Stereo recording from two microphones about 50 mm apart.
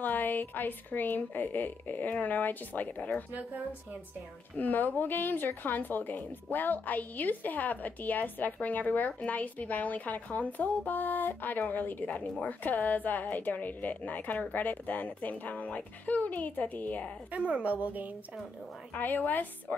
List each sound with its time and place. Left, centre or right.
0.0 s a woman's voice: left
4.6 s a woman's voice: left
17.3 s a woman's voice: right
18.9 s a woman's voice: left